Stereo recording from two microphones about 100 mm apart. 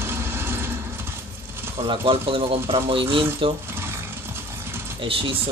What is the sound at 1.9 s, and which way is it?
Speech, 65° right (ahead or behind).